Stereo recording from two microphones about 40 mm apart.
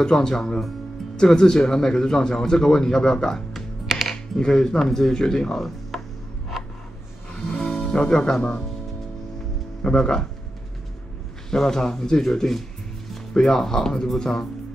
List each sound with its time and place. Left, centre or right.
0.0 s speech: centre
3.8 s music: centre
4.1 s speech: centre
7.3 s music: centre
7.9 s speech: centre
9.8 s speech: left
11.5 s speech: centre